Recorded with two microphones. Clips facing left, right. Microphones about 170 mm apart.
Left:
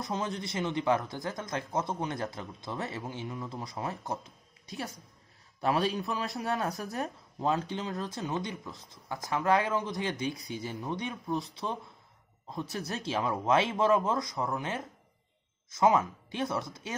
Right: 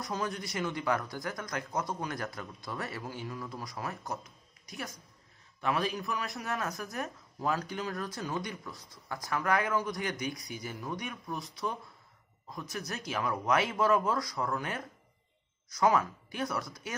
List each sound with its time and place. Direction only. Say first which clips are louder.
0.0 s a man's voice: left 1 dB; 25° left (ahead or behind)